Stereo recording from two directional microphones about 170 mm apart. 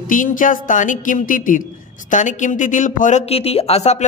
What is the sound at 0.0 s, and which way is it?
Speech, 50° left (ahead or behind).